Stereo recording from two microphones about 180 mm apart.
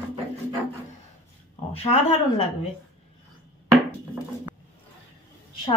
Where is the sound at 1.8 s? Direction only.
35° left (ahead or behind).